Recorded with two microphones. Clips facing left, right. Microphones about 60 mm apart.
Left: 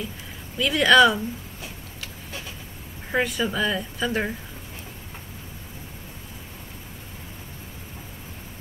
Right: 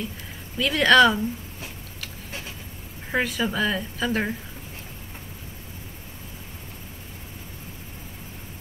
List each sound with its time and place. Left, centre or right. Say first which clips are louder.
0.6 s a woman's voice: even; centre
3.1 s a woman's voice: left 1 dB; centre